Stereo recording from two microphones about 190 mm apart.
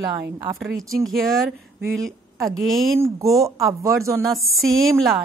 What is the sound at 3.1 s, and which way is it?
Speech, 15° right (ahead or behind).